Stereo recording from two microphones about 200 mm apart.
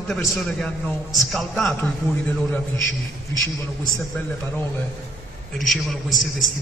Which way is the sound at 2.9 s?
75° left (ahead or behind).